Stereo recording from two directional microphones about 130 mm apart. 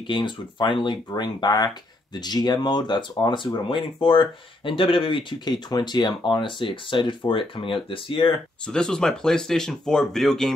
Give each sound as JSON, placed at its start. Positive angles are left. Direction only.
{"t": 0.0, "sound": "speech", "side_deg": 40}
{"t": 8.6, "sound": "speech", "side_deg": 5}